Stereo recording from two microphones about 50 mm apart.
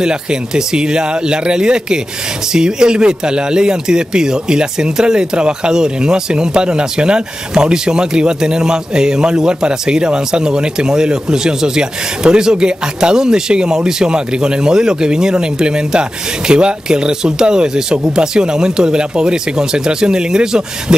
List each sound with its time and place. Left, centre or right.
0.0 s speech: centre